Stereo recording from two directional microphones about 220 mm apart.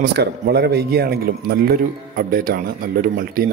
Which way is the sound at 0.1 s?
50° right (ahead or behind).